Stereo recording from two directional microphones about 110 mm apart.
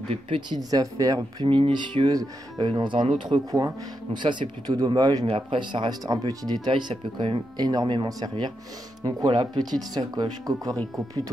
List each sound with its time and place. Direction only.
0.5 s speech: 35° right (ahead or behind)
1.4 s speech: 50° right (ahead or behind)
2.0 s speech: 40° right (ahead or behind)
5.2 s speech: 55° right (ahead or behind); by 10.8 s 35° right (ahead or behind)